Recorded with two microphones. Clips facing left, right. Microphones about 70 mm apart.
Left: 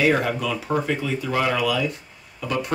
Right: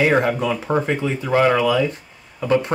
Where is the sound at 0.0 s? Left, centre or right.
Right.